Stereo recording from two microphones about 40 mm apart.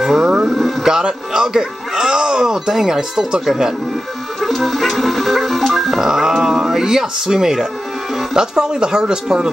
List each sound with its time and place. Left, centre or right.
0.0 s speech: centre
0.5 s speech: centre
0.8 s speech: centre
4.4 s music: centre
8.4 s speech: centre